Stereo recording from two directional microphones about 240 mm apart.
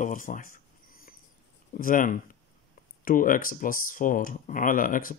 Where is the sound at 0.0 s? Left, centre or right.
Left.